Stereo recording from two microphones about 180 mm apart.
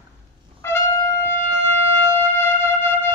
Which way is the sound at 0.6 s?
15° left (ahead or behind).